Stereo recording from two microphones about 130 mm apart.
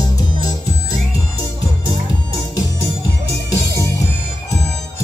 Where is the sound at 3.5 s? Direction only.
25° left (ahead or behind).